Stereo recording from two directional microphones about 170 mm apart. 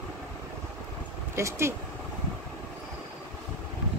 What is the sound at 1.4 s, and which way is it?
Speech, 15° right (ahead or behind).